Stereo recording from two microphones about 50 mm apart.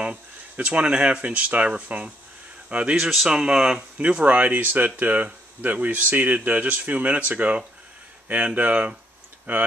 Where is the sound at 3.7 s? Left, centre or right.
Right.